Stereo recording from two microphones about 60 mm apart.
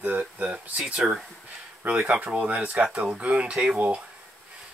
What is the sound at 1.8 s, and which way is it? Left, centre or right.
Speech, right.